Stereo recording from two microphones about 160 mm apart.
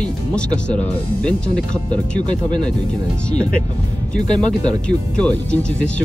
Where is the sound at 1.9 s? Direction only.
25° right (ahead or behind).